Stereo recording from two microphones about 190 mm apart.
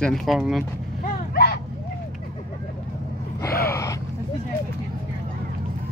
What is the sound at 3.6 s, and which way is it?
Gasp, 15° left (ahead or behind).